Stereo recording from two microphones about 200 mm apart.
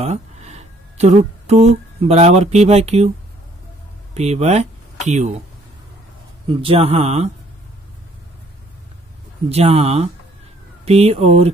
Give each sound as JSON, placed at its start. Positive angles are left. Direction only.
{"t": 0.0, "sound": "speech", "side_deg": -35}
{"t": 4.1, "sound": "speech", "side_deg": -35}
{"t": 6.5, "sound": "speech", "side_deg": -25}
{"t": 9.5, "sound": "speech", "side_deg": -30}